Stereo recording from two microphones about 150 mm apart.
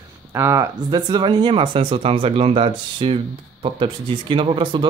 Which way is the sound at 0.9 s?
30° right (ahead or behind).